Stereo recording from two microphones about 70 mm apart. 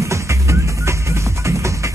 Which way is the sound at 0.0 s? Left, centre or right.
Right.